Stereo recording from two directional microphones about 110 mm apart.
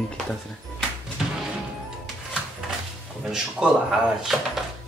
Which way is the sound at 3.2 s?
5° right (ahead or behind).